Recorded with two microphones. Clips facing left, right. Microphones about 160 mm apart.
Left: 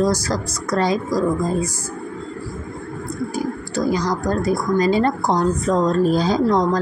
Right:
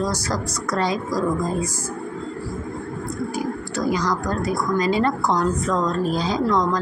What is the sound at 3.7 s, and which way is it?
A woman's voice, 35° left (ahead or behind).